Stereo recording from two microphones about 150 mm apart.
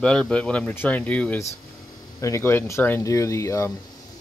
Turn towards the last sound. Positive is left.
turn(degrees=20)  # may be behind; listen again after turning